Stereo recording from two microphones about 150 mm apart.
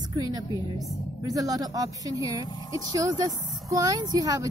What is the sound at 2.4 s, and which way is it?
Speech, 30° left (ahead or behind).